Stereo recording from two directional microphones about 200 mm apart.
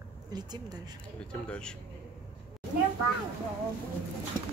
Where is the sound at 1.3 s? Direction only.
5° left (ahead or behind).